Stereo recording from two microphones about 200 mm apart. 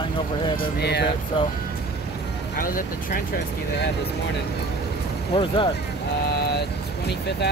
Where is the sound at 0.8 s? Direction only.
55° left (ahead or behind).